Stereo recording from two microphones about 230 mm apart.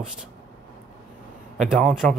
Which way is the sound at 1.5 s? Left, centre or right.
Centre.